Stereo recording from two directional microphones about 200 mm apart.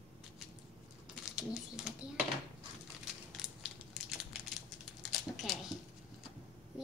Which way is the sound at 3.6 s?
Centre (ahead or behind).